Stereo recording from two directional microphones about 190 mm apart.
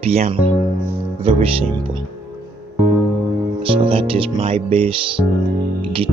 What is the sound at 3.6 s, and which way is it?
Speech, 30° right (ahead or behind).